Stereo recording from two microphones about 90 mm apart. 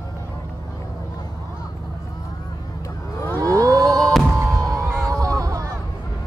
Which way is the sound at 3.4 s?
40° right (ahead or behind).